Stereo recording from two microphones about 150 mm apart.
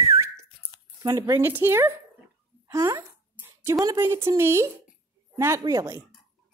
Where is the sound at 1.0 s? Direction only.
20° right (ahead or behind).